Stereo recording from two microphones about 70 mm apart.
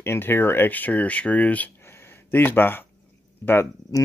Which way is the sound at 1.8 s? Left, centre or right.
Left.